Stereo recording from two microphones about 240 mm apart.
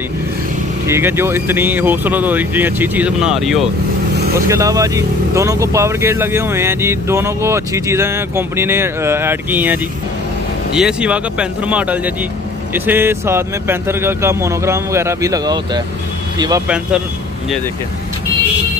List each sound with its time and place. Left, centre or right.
0.8 s speech: centre
4.5 s speech: centre
16.6 s speech: centre